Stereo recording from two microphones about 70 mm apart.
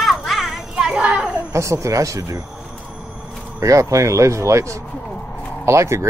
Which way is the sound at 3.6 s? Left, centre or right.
Right.